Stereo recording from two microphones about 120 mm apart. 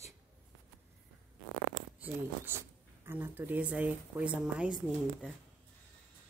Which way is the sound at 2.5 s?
20° right (ahead or behind).